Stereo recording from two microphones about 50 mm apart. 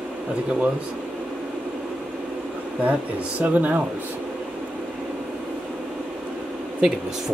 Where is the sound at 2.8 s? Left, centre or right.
Right.